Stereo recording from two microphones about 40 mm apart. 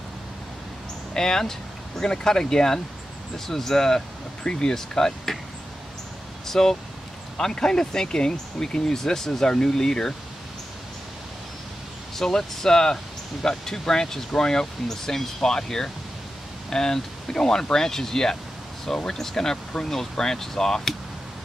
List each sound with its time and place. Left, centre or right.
1.1 s speech: centre
6.4 s speech: centre
12.2 s speech: centre